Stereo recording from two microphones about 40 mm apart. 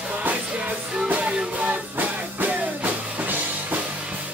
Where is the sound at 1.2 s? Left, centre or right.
Right.